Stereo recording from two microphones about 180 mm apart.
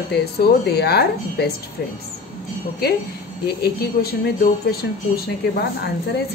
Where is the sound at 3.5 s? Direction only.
60° left (ahead or behind).